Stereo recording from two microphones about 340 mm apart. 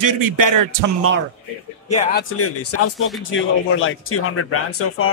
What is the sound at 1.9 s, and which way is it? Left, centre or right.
Speech, left.